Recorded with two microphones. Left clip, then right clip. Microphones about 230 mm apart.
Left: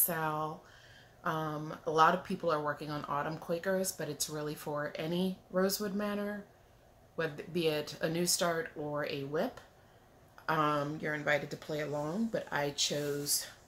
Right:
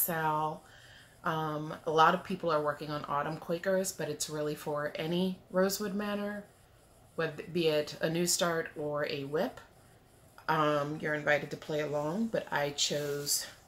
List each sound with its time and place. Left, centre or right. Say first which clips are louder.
0.0 s speech: right 3 dB; centre